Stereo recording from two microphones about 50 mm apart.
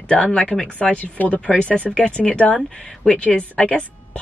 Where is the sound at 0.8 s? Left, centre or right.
Left.